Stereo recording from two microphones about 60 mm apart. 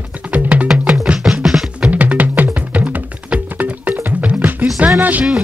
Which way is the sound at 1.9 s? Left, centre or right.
Right.